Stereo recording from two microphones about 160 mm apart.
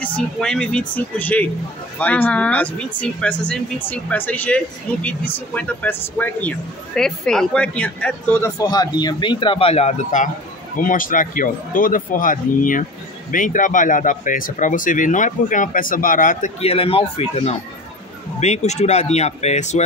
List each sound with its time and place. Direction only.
0.0 s speech: 5° left (ahead or behind); by 19.8 s 45° left (ahead or behind)